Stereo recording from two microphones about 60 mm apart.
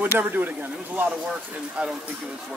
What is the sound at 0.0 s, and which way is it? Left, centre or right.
Speech, right.